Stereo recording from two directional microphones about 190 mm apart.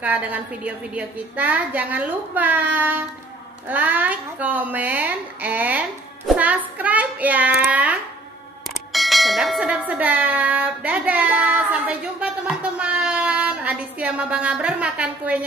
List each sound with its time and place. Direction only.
0.0 s a woman's voice: 5° right (ahead or behind)
8.9 s bell: centre (ahead or behind)